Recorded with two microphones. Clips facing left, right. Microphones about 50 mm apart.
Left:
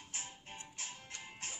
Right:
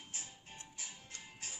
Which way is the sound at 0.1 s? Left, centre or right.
Left.